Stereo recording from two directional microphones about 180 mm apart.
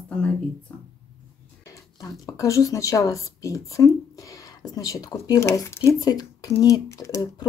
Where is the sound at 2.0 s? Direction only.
20° left (ahead or behind).